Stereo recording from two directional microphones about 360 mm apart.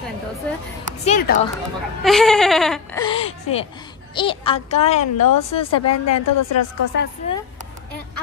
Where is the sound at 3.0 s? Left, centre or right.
Centre.